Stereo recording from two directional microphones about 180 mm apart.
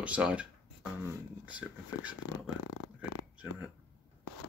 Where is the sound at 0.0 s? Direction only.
5° right (ahead or behind).